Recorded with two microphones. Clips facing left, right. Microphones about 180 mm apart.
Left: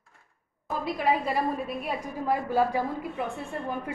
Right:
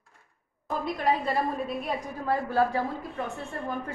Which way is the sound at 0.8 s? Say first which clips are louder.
Left 1 dB; 5° left (ahead or behind).